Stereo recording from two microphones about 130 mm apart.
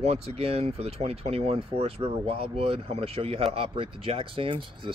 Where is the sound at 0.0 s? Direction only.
55° right (ahead or behind).